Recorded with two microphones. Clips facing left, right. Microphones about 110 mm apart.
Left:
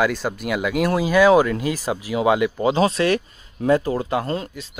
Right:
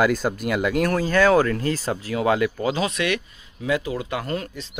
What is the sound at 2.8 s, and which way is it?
Speech, 35° left (ahead or behind).